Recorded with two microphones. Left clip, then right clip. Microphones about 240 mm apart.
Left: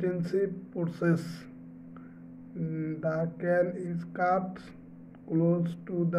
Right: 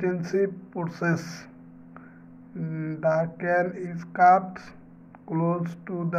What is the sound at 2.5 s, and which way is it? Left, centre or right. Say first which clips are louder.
Speech: right 1 dB; centre.